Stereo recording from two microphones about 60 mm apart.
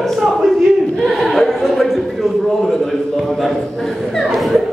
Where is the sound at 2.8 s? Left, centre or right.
Centre.